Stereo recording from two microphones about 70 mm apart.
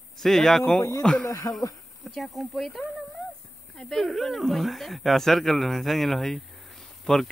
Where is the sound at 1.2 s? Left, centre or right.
Left.